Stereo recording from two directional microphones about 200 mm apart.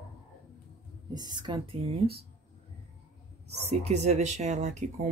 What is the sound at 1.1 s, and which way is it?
Speech, 20° right (ahead or behind).